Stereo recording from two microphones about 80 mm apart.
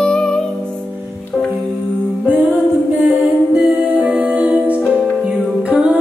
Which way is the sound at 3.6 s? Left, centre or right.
Centre.